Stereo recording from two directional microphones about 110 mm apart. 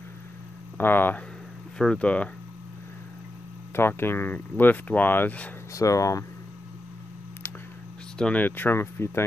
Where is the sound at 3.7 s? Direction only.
20° left (ahead or behind).